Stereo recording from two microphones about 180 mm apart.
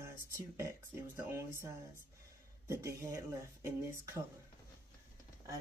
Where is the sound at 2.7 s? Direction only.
15° right (ahead or behind).